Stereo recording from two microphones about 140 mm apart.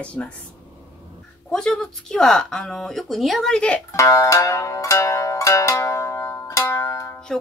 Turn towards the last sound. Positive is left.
turn(degrees=20)  # may be behind; listen again after turning